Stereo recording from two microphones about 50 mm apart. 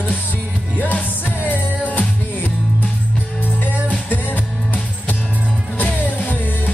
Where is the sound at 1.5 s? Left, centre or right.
Left.